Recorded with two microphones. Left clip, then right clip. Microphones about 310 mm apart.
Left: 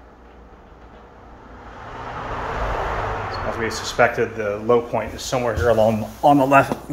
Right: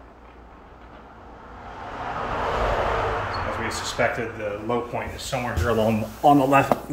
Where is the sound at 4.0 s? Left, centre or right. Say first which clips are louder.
Left 7 dB; centre.